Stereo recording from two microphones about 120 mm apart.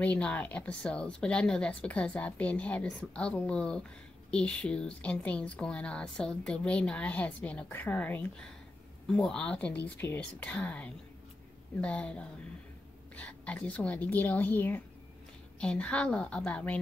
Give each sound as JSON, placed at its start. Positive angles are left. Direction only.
{"t": 0.0, "sound": "a woman's voice", "side_deg": 10}